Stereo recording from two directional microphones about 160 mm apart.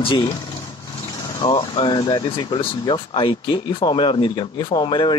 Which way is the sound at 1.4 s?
25° left (ahead or behind).